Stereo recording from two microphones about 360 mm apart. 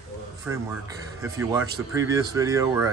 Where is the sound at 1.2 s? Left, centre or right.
Centre.